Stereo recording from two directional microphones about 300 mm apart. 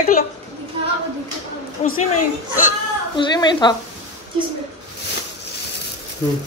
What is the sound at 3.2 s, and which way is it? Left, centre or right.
Speech, centre.